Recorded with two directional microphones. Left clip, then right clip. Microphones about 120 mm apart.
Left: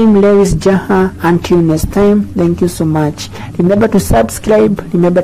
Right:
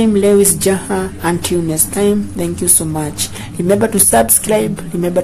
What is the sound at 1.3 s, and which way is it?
Speech, 40° left (ahead or behind).